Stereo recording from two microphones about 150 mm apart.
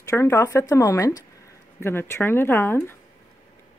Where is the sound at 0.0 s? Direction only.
20° left (ahead or behind).